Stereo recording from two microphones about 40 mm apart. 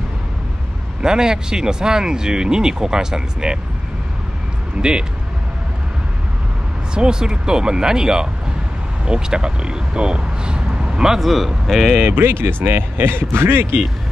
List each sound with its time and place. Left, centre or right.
1.0 s speech: centre
6.9 s speech: right
11.1 s speech: centre
12.0 s speech: right